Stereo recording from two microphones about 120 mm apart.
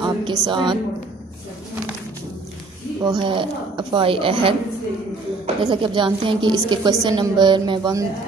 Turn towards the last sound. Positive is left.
turn(degrees=-40)  # may be behind; listen again after turning